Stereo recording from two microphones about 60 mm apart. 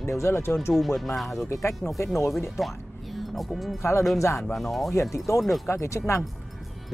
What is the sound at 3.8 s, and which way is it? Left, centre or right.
Speech, left.